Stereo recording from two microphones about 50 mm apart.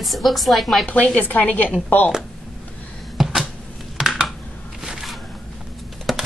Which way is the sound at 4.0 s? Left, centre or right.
Centre.